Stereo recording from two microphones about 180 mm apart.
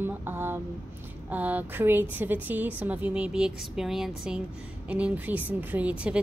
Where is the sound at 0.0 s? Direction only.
10° right (ahead or behind).